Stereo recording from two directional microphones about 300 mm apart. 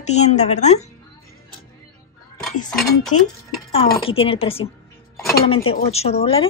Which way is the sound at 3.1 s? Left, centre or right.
Left.